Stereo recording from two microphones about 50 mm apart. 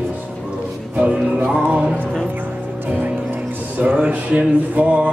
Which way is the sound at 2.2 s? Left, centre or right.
Right.